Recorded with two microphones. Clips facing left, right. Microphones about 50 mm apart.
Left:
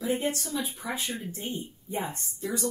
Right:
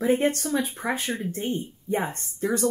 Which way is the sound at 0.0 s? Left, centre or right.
Right.